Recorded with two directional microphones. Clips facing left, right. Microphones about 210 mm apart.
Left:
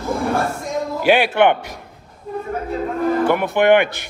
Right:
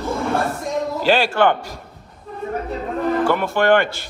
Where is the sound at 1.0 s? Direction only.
15° left (ahead or behind).